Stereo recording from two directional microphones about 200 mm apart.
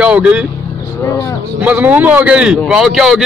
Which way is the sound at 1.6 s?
10° right (ahead or behind).